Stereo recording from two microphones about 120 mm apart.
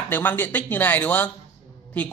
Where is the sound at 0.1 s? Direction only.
15° left (ahead or behind).